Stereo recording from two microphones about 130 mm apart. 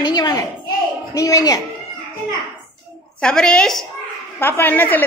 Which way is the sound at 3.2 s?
5° left (ahead or behind).